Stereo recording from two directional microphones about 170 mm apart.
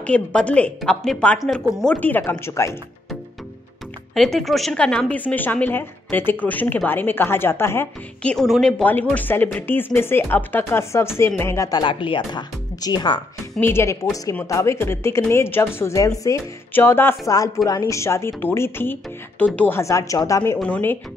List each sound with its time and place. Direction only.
0.0 s a woman's voice: 5° left (ahead or behind)
4.1 s a woman's voice: centre (ahead or behind); by 13.2 s 25° left (ahead or behind)
13.6 s a woman's voice: 15° left (ahead or behind)
20.5 s a woman's voice: 5° left (ahead or behind)